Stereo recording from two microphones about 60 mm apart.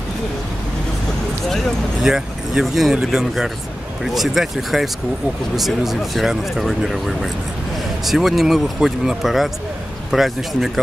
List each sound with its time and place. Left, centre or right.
2.0 s speech: centre